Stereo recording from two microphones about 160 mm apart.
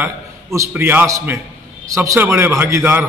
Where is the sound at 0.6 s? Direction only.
10° right (ahead or behind).